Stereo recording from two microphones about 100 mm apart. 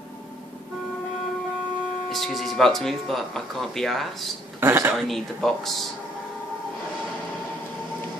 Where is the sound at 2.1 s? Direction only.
Centre (ahead or behind).